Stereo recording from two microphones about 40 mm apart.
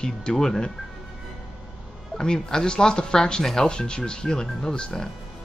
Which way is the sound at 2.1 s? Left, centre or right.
Centre.